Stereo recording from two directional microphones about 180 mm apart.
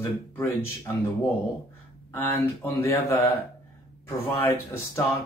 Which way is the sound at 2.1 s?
10° left (ahead or behind).